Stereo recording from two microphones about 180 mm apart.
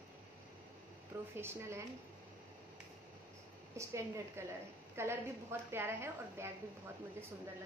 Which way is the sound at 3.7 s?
15° right (ahead or behind).